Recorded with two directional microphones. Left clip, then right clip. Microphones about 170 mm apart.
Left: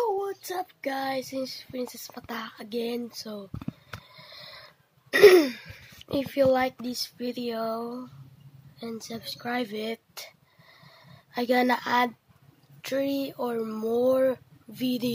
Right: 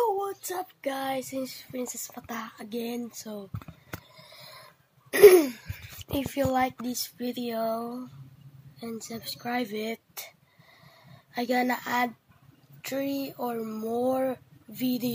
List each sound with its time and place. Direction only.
0.2 s child singing: 15° left (ahead or behind)
4.1 s a sound: 5° left (ahead or behind)
5.1 s speech: 10° left (ahead or behind)
7.2 s child singing: 10° left (ahead or behind)
8.7 s speech: 20° left (ahead or behind)